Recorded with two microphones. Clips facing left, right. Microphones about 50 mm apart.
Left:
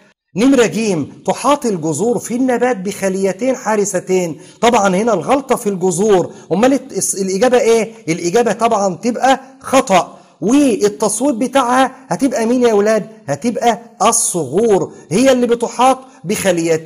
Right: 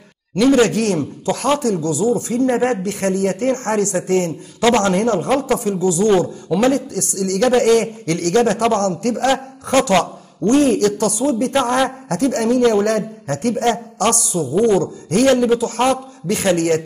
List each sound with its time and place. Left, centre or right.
0.4 s a man's voice: left
14.6 s a man's voice: left